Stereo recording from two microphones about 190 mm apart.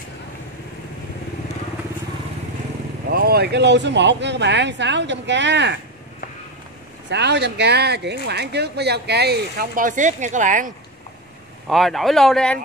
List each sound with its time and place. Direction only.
3.1 s speech: 55° right (ahead or behind)
7.1 s speech: 65° right (ahead or behind); by 10.7 s 40° right (ahead or behind)
11.7 s speech: centre (ahead or behind)